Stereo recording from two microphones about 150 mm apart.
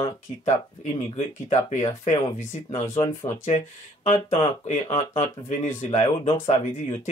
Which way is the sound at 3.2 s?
45° left (ahead or behind).